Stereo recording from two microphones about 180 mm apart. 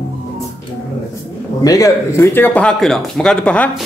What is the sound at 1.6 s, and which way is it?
Speech, 20° left (ahead or behind).